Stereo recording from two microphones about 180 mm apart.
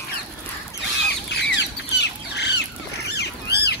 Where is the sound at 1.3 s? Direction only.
70° left (ahead or behind).